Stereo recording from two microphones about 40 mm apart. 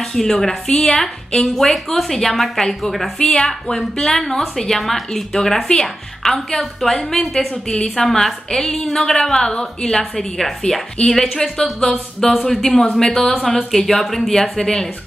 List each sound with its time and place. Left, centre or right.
0.0 s a woman's voice: centre
0.7 s speech: left
1.5 s a woman's voice: centre
3.2 s a woman's voice: left; by 14.3 s centre
14.3 s a woman's voice: centre